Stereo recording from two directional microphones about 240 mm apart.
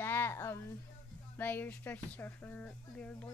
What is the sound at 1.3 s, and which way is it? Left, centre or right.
A child's voice, centre.